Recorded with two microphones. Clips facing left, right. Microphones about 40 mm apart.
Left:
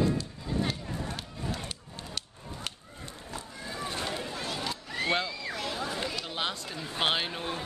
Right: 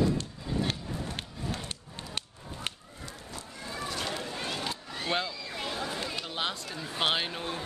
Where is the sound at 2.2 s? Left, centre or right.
Right.